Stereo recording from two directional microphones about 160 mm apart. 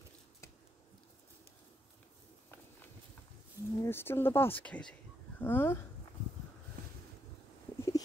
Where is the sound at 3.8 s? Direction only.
15° left (ahead or behind).